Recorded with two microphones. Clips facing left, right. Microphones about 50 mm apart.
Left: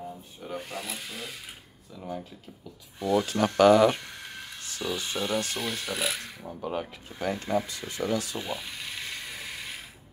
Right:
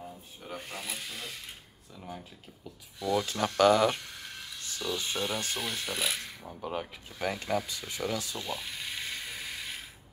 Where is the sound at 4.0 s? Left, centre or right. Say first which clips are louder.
Left 3 dB; centre.